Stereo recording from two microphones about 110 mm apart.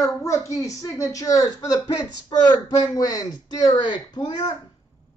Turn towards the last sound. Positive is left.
turn(degrees=40)  # may be behind; listen again after turning